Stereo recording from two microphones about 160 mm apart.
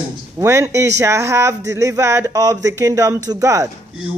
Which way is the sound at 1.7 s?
20° right (ahead or behind).